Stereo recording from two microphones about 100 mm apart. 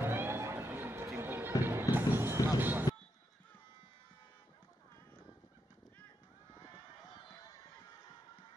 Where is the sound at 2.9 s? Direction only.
40° left (ahead or behind).